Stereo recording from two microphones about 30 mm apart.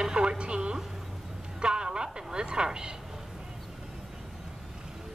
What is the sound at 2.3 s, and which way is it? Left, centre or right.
Speech, right.